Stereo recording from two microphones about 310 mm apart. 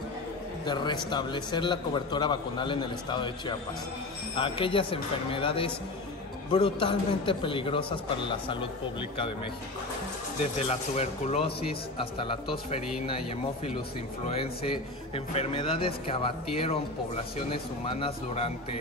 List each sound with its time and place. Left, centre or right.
0.7 s a man's voice: centre
10.7 s a man's voice: centre
14.3 s a man's voice: centre